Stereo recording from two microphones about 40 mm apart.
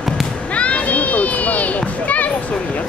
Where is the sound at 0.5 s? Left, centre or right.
Left.